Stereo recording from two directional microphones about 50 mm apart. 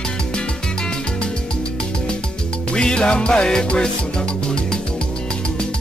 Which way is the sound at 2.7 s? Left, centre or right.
Centre.